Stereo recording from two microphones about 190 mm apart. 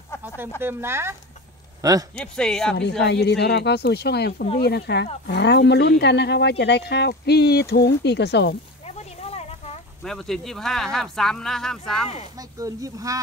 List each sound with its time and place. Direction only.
0.6 s speech: 10° right (ahead or behind)
2.3 s speech: 5° left (ahead or behind)
3.0 s speech: 65° left (ahead or behind)
8.8 s a sound: 35° left (ahead or behind)
10.0 s speech: centre (ahead or behind)
12.4 s speech: 20° right (ahead or behind)